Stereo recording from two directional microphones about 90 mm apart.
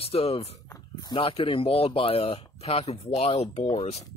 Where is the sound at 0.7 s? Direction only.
40° left (ahead or behind).